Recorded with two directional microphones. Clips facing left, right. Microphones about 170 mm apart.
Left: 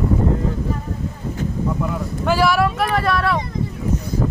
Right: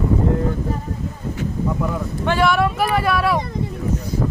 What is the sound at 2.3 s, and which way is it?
Speech, 5° left (ahead or behind).